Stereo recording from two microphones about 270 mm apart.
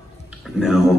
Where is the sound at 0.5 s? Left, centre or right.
Centre.